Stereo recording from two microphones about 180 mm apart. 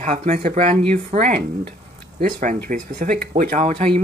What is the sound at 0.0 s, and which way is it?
Speech, 40° right (ahead or behind).